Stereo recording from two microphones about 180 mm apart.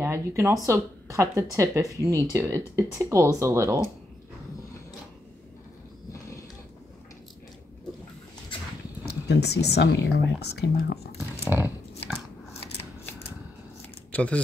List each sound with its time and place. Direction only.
0.0 s a woman's voice: 15° right (ahead or behind)
9.0 s speech: 65° left (ahead or behind)
11.1 s dog: 15° right (ahead or behind)
14.1 s speech: 5° left (ahead or behind)